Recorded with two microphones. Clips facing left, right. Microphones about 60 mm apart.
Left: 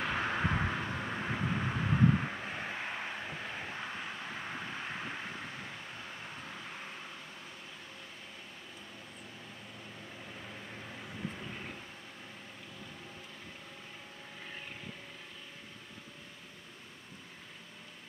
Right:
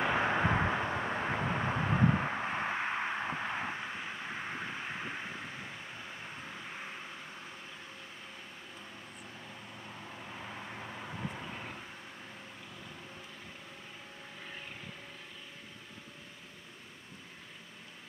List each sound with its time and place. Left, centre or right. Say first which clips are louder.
0.0 s vehicle: right 4 dB; centre
3.7 s vehicle: right 1 dB; centre
10.5 s vehicle: right 3 dB; centre